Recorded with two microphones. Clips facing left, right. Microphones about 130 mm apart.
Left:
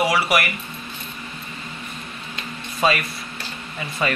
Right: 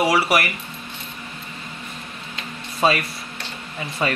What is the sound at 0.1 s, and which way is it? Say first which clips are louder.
Speech: right 1 dB; 30° right (ahead or behind).